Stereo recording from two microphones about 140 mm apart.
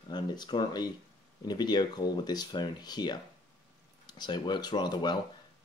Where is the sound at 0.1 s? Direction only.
30° left (ahead or behind).